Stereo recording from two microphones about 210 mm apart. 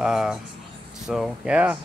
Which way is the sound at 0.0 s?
Centre (ahead or behind).